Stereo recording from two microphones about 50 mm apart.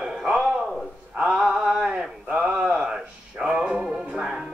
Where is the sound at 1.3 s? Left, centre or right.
Centre.